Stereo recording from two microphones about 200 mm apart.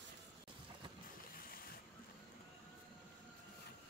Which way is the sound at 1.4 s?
50° left (ahead or behind).